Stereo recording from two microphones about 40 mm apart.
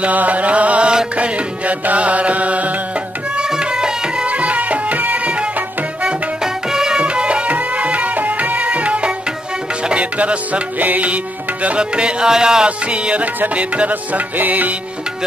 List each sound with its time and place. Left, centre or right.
0.0 s music: right
3.3 s music: centre
4.3 s music: right
6.4 s music: centre; by 11.1 s right
11.6 s music: right
12.6 s music: right